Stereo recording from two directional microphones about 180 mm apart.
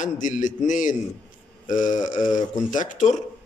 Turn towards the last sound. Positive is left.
turn(degrees=45)  # may be behind; listen again after turning